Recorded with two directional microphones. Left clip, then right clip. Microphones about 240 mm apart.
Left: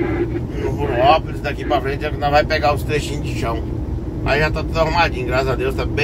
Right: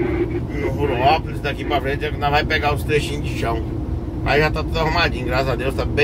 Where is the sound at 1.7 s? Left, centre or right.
Centre.